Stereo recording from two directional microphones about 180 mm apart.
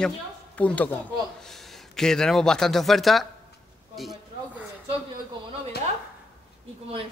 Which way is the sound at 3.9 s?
Centre (ahead or behind).